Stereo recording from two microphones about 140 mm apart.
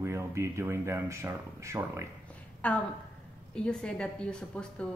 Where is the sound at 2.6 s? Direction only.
10° left (ahead or behind).